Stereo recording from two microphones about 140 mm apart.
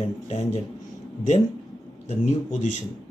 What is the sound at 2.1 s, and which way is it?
Speech, 55° left (ahead or behind).